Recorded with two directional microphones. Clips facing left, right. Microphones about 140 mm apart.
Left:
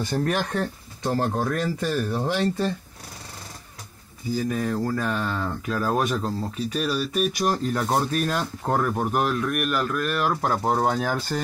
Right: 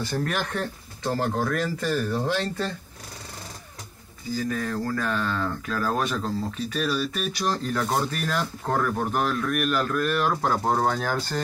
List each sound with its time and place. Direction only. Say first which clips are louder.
0.0 s speech: left 3 dB; 20° left (ahead or behind)
4.4 s speech: left 2 dB; 20° left (ahead or behind)
7.3 s speech: left 2 dB; 15° left (ahead or behind)